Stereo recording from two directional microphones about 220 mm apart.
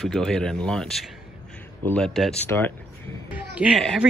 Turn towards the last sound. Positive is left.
turn(degrees=0)  # may be behind; listen again after turning